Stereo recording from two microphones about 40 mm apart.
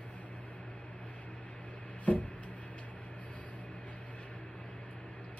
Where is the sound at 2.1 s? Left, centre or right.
Left.